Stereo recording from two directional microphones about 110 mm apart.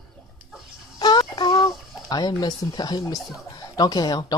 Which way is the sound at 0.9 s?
40° left (ahead or behind).